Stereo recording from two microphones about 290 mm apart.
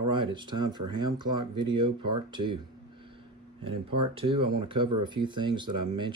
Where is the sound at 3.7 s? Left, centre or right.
Right.